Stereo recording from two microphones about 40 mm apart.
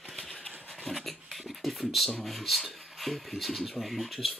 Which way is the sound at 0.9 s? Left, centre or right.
Centre.